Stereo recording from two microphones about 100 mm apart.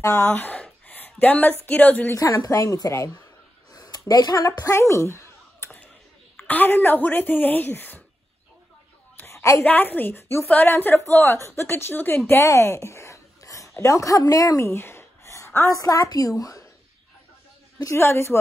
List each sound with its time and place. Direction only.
0.0 s a sound: 30° left (ahead or behind)
1.7 s a woman's voice: 15° left (ahead or behind)
2.1 s a woman's voice: 35° left (ahead or behind)
3.7 s a sound: 40° left (ahead or behind)
6.3 s a woman's voice: 15° left (ahead or behind)
9.1 s a sound: 20° left (ahead or behind)
9.6 s a woman's voice: 15° left (ahead or behind)
15.8 s a woman's voice: 35° left (ahead or behind)
17.9 s a woman's voice: 25° left (ahead or behind)